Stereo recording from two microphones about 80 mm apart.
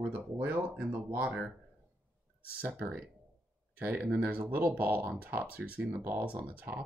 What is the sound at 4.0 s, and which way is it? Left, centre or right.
Speech, centre.